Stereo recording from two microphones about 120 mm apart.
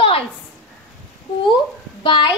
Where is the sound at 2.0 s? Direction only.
45° left (ahead or behind).